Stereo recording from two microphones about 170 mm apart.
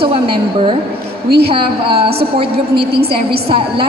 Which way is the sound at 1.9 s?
35° right (ahead or behind).